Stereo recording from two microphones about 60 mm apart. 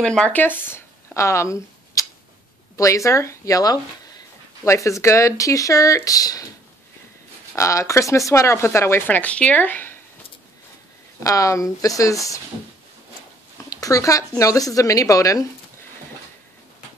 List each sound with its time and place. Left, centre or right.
0.0 s speech: centre
0.3 s speech: left
1.1 s a sound: left
2.7 s speech: left
4.6 s speech: left
7.5 s speech: left
9.0 s speech: left
11.2 s speech: left
13.7 s speech: left